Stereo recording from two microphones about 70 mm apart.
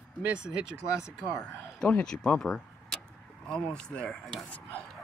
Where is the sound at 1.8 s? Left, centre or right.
Centre.